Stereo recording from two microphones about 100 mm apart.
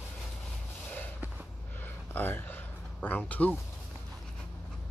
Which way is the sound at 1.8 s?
20° left (ahead or behind).